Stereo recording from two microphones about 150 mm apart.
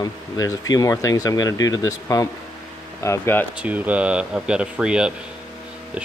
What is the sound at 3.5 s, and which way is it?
Speech, 10° right (ahead or behind).